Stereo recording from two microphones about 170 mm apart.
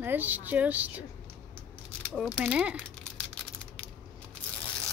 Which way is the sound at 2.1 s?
Centre (ahead or behind).